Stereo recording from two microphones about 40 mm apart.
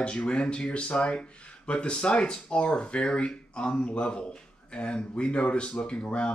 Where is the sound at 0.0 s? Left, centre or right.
Left.